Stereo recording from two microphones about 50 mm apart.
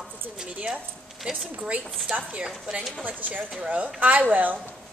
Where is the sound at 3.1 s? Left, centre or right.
Right.